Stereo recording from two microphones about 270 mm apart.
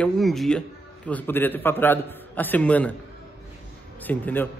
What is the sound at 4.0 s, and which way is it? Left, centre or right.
Speech, centre.